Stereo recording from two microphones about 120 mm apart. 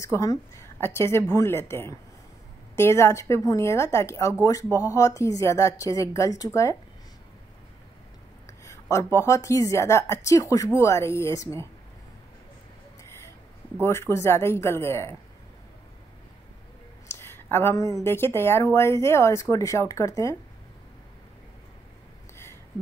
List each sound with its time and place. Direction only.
0.0 s a woman's voice: 25° left (ahead or behind)
8.9 s a woman's voice: 25° left (ahead or behind)
13.8 s a woman's voice: 20° left (ahead or behind)
17.1 s a sound: 20° left (ahead or behind)
18.0 s a woman's voice: 20° left (ahead or behind)